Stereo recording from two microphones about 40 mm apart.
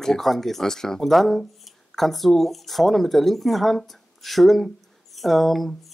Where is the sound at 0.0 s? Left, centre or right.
Centre.